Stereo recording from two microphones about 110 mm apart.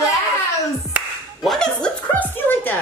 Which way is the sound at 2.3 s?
15° left (ahead or behind).